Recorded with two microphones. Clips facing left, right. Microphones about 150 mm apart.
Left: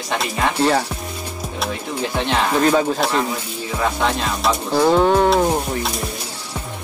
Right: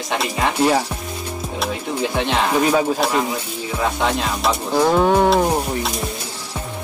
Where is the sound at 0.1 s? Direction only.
10° right (ahead or behind).